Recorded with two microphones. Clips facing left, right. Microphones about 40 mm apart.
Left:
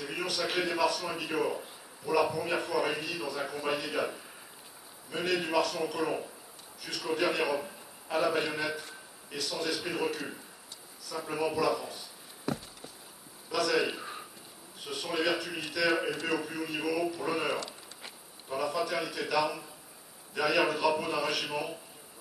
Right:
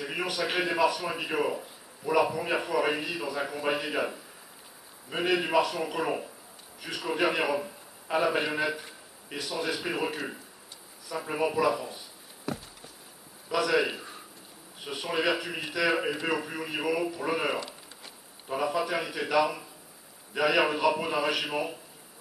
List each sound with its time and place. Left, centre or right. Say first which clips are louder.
0.0 s a man's voice: right 3 dB; centre
5.1 s a man's voice: right 4 dB; right
12.5 s a sound: left 1 dB; centre
13.5 s a man's voice: right 3 dB; centre